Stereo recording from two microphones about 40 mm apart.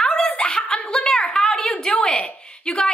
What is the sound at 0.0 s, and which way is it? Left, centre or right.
Snicker, centre.